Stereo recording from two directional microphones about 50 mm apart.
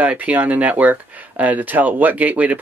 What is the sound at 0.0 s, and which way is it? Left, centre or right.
Speech, right.